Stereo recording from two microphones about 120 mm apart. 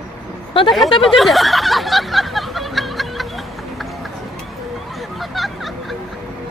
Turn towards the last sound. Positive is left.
turn(degrees=0)  # may be behind; listen again after turning